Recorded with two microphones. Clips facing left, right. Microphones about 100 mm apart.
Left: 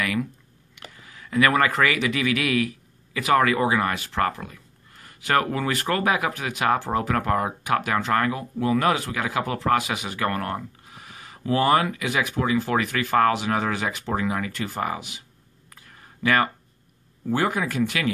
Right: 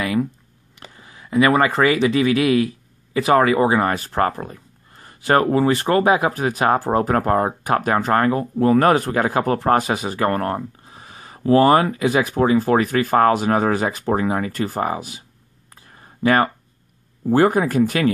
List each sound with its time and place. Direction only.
0.0 s speech: 25° right (ahead or behind)
15.7 s a sound: 30° right (ahead or behind)
17.3 s speech: 40° right (ahead or behind)